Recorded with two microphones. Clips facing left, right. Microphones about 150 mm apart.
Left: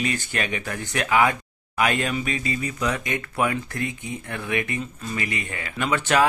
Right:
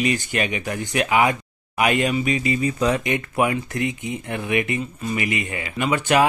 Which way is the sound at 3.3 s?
15° right (ahead or behind).